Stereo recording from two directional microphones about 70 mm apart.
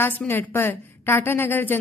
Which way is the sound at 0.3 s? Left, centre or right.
Left.